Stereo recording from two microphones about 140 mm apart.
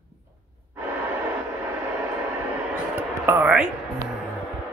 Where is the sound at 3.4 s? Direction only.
5° right (ahead or behind).